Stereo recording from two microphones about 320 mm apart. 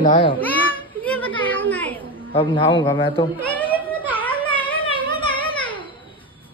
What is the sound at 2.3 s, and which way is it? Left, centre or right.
Speech, centre.